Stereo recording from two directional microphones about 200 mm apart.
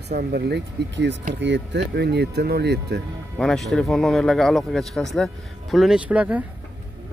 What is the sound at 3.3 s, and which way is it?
Speech, 5° left (ahead or behind).